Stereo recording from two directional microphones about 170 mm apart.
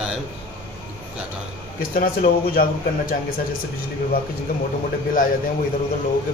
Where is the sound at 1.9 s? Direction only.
55° left (ahead or behind).